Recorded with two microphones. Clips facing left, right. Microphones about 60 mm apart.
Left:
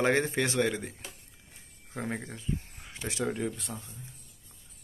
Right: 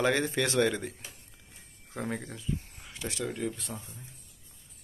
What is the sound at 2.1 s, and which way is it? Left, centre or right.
A man's voice, left.